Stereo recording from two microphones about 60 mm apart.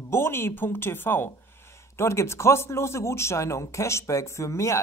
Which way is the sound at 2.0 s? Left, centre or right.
Left.